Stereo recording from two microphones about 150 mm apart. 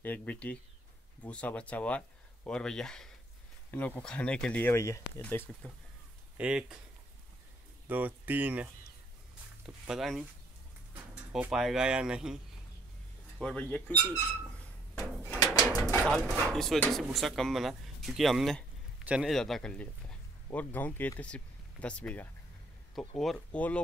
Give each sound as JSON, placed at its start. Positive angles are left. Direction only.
{"t": 0.0, "sound": "speech", "side_deg": 10}
{"t": 6.3, "sound": "speech", "side_deg": -5}
{"t": 7.9, "sound": "speech", "side_deg": -10}
{"t": 9.8, "sound": "speech", "side_deg": 0}
{"t": 11.5, "sound": "speech", "side_deg": -5}
{"t": 13.4, "sound": "speech", "side_deg": 5}
{"t": 15.0, "sound": "drawer open or close", "side_deg": 20}
{"t": 16.3, "sound": "speech", "side_deg": 0}